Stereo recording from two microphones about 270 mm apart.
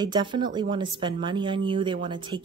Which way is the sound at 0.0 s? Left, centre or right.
Centre.